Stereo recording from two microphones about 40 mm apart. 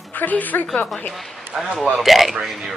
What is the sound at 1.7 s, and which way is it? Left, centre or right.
Speech, centre.